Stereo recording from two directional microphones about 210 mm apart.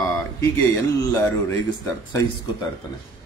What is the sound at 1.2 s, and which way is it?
Speech, 15° left (ahead or behind).